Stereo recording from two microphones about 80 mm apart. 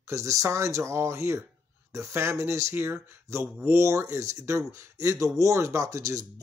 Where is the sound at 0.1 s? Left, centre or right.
Right.